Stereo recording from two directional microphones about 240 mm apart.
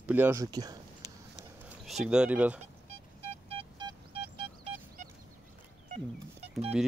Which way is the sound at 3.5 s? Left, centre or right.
Right.